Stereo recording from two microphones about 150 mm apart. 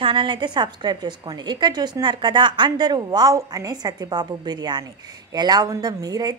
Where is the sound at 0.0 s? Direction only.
35° right (ahead or behind).